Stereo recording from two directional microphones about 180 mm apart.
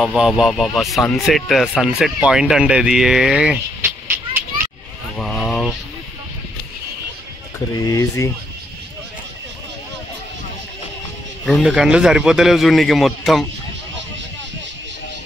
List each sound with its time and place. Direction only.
0.0 s speech: centre (ahead or behind)
5.1 s vehicle: 5° left (ahead or behind)
7.7 s speech: 20° left (ahead or behind)
11.4 s speech: centre (ahead or behind)